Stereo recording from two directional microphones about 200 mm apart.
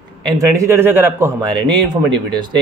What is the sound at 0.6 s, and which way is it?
Speech, 15° right (ahead or behind).